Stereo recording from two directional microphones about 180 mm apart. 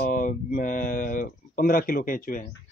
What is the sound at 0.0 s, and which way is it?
Speech, 50° left (ahead or behind).